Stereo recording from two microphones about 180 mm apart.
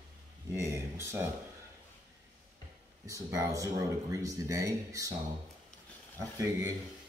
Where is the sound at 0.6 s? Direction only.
15° right (ahead or behind).